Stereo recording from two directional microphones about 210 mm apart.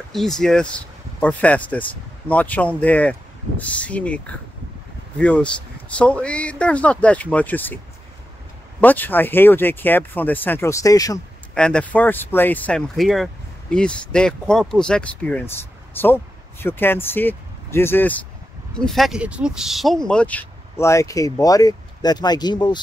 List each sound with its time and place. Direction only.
0.1 s speech: centre (ahead or behind)
5.2 s speech: 5° left (ahead or behind)
8.8 s speech: 10° left (ahead or behind)
11.5 s speech: 5° left (ahead or behind); by 22.8 s 20° left (ahead or behind)